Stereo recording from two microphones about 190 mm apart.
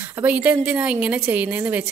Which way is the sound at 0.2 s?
10° right (ahead or behind).